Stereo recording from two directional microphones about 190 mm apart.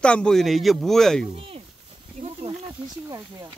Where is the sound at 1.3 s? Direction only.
30° right (ahead or behind).